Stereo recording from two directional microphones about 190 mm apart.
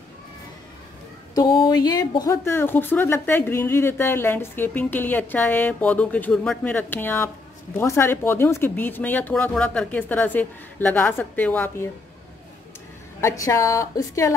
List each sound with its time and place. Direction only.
1.3 s speech: 25° left (ahead or behind)
13.2 s speech: 15° left (ahead or behind)